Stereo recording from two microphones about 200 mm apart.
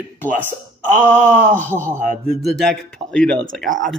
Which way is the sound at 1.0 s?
10° left (ahead or behind).